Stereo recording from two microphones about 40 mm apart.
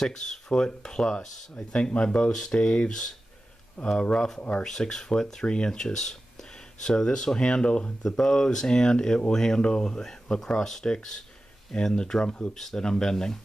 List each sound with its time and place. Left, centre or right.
0.0 s speech: centre
3.8 s speech: left
4.6 s speech: centre
8.0 s speech: centre